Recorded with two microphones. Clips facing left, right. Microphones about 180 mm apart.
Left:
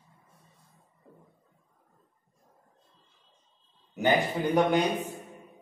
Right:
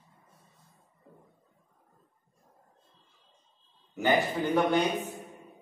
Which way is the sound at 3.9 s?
15° left (ahead or behind).